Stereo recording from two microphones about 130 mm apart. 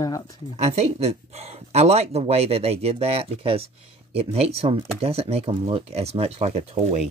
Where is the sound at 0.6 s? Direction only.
55° right (ahead or behind).